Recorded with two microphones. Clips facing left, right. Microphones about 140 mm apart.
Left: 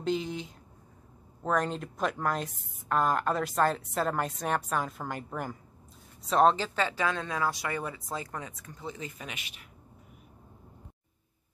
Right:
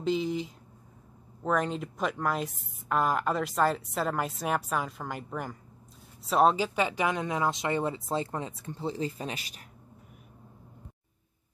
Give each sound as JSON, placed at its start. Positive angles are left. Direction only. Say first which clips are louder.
{"t": 0.0, "sound": "speech", "louder": "right 3 dB", "side_deg": 0}